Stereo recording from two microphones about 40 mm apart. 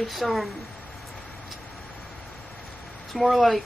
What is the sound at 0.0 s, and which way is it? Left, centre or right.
Speech, centre.